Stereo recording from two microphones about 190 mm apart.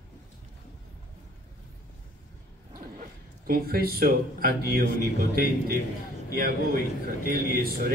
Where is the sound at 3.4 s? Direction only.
50° right (ahead or behind).